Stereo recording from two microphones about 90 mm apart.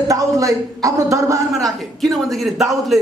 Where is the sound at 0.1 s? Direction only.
40° right (ahead or behind).